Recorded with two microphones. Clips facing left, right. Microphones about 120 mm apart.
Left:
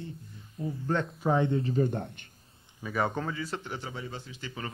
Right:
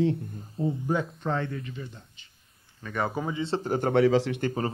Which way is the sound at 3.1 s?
15° right (ahead or behind).